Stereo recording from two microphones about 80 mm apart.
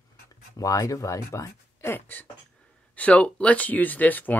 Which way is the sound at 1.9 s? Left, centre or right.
Left.